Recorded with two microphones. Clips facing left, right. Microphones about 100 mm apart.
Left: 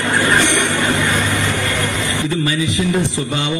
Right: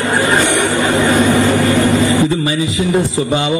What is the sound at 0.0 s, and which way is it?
Train, 30° right (ahead or behind).